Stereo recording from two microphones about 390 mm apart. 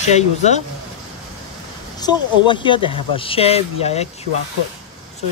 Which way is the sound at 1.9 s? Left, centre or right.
Centre.